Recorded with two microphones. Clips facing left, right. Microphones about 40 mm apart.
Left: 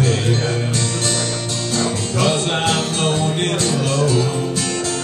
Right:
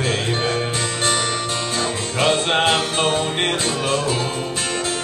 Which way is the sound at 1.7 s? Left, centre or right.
Right.